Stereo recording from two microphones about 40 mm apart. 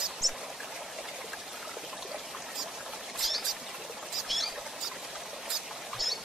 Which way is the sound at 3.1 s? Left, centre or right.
Centre.